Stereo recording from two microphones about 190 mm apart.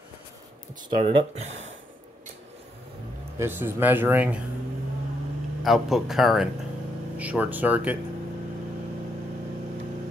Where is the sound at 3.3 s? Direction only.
10° right (ahead or behind).